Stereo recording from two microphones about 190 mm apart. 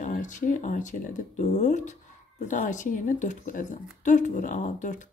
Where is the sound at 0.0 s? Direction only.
40° left (ahead or behind).